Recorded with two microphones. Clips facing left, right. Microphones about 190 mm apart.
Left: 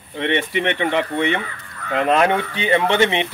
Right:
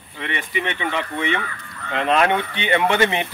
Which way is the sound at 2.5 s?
35° left (ahead or behind).